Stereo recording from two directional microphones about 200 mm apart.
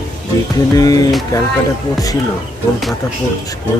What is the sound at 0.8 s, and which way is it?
Speech, 20° left (ahead or behind).